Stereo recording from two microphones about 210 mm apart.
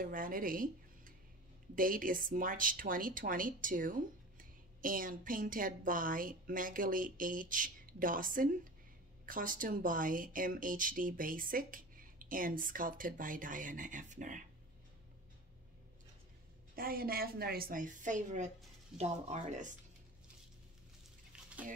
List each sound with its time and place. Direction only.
0.0 s speech: 40° right (ahead or behind)
16.7 s a woman's voice: 45° right (ahead or behind)
21.3 s a sound: 5° right (ahead or behind)